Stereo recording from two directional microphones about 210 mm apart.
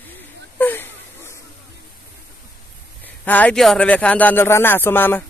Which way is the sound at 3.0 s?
5° left (ahead or behind).